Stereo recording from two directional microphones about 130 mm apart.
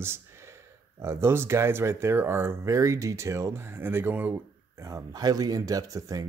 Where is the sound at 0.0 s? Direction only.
20° right (ahead or behind).